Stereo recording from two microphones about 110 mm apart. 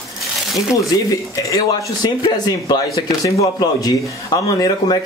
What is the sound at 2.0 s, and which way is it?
Speech, 40° left (ahead or behind).